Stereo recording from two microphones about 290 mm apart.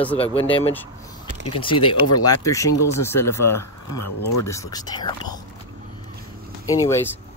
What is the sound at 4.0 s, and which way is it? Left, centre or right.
Speech, left.